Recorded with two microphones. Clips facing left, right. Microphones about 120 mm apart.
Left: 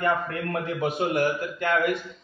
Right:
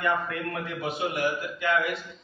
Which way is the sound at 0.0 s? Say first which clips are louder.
Left 2 dB; 45° left (ahead or behind).